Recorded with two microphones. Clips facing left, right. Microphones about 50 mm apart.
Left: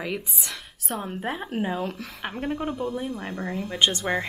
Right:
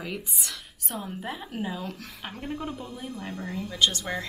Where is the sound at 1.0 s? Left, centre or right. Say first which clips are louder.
Left 5 dB; left.